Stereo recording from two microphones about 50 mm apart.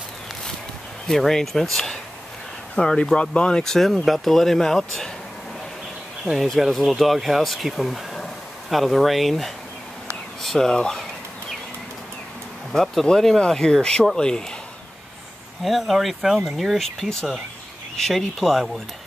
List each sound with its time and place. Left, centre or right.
1.0 s speech: centre
2.8 s speech: left; by 5.1 s centre
6.3 s speech: centre
12.7 s speech: centre
15.6 s speech: centre